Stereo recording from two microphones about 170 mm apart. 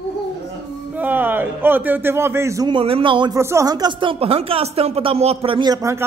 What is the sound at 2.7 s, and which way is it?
Speech, 30° right (ahead or behind).